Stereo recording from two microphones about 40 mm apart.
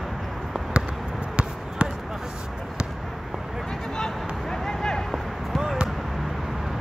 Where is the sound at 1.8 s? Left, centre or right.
Right.